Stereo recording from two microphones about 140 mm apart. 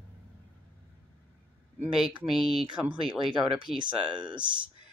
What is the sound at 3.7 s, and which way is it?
Speech, 35° right (ahead or behind).